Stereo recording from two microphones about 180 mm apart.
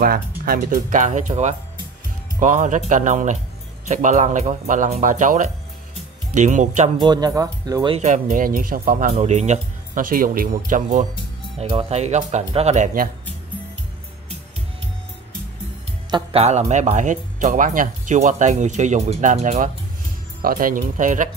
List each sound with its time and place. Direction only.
0.5 s speech: 50° right (ahead or behind)
7.0 s speech: 25° right (ahead or behind)
8.0 s speech: 45° right (ahead or behind)
9.1 s speech: 40° right (ahead or behind)
16.1 s speech: 30° right (ahead or behind)